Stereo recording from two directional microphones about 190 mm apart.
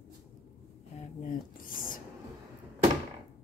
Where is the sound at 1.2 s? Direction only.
45° left (ahead or behind).